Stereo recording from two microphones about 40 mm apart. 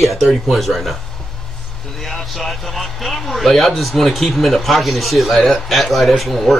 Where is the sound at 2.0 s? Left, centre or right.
Centre.